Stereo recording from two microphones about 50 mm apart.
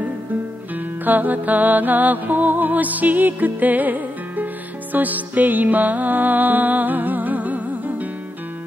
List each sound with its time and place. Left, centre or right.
0.7 s music: right